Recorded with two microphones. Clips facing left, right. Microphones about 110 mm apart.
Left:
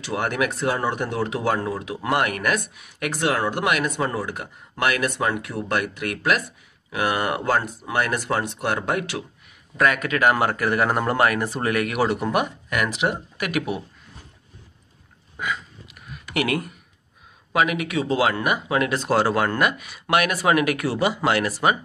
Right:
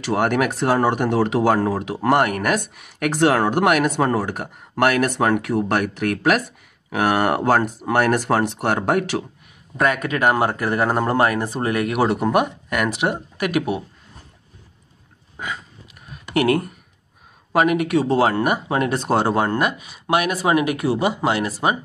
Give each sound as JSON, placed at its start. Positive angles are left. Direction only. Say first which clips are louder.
{"t": 0.0, "sound": "speech", "louder": "right 5 dB", "side_deg": -55}
{"t": 2.0, "sound": "speech", "louder": "right 5 dB", "side_deg": -45}
{"t": 9.8, "sound": "speech", "louder": "right 1 dB", "side_deg": -40}
{"t": 12.3, "sound": "speech", "louder": "right 4 dB", "side_deg": -45}
{"t": 15.3, "sound": "a sound", "louder": "left 2 dB", "side_deg": -35}
{"t": 17.5, "sound": "speech", "louder": "right 5 dB", "side_deg": -35}